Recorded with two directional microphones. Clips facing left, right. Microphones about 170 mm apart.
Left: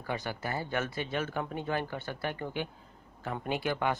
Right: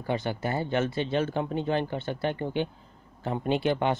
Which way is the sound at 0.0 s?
25° right (ahead or behind).